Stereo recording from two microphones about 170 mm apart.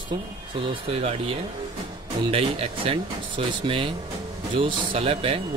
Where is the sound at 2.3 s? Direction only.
35° right (ahead or behind).